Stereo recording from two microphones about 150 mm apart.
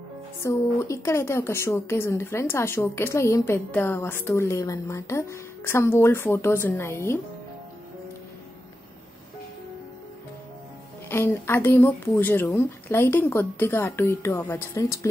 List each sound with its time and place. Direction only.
0.4 s speech: 20° left (ahead or behind)
11.1 s speech: 15° left (ahead or behind)